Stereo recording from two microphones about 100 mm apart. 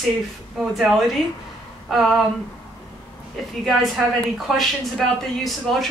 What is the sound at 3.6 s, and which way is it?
Speech, centre (ahead or behind).